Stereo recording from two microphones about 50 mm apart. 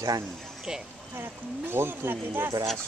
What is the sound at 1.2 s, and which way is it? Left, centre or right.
Speech, right.